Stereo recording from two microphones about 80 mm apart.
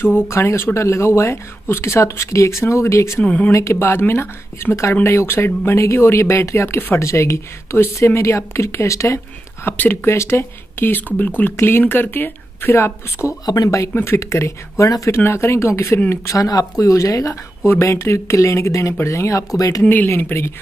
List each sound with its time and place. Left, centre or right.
0.0 s speech: left
3.3 s speech: centre
3.5 s speech: left
9.7 s speech: left
19.8 s speech: left